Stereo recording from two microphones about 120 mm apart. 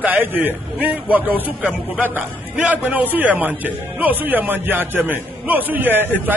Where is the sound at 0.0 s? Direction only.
15° right (ahead or behind).